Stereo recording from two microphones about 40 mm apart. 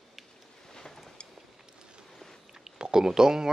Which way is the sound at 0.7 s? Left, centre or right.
Centre.